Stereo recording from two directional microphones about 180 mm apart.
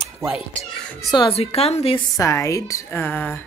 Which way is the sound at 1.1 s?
30° left (ahead or behind).